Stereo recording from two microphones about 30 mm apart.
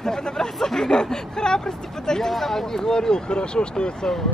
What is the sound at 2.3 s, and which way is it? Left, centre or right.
Speech, centre.